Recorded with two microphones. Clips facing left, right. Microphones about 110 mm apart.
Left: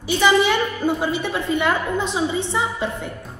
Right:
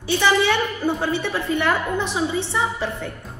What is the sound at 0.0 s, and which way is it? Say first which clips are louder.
A woman's voice: left 2 dB; 15° left (ahead or behind).